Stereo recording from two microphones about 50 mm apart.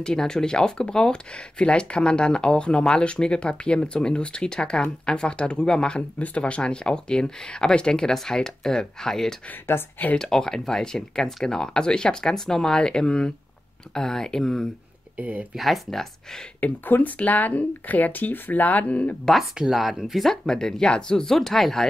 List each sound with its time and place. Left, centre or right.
0.0 s speech: centre
15.1 s speech: right
15.5 s speech: centre
16.6 s speech: left
19.7 s speech: centre
20.4 s speech: centre